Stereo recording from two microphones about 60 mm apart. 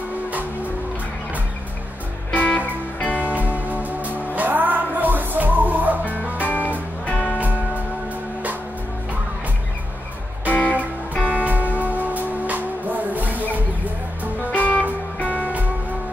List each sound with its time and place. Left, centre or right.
2.3 s music: left
3.2 s music: right
6.4 s music: left
7.1 s music: centre
7.3 s music: right
10.4 s music: left
11.4 s music: right
14.5 s music: left